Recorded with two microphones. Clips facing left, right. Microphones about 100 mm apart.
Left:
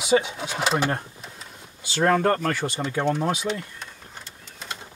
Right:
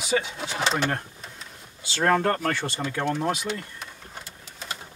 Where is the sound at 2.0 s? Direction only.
15° left (ahead or behind).